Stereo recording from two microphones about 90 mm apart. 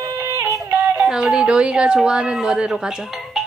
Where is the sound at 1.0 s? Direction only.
10° right (ahead or behind).